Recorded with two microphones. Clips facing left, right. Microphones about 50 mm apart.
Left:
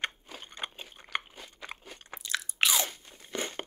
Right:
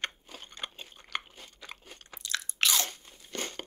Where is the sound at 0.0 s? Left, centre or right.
Centre.